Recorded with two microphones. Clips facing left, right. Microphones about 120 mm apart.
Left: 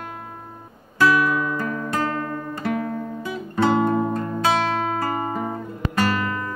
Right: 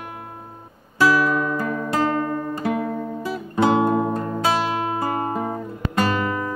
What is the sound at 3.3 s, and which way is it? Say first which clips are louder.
Music: right 1 dB; 5° right (ahead or behind).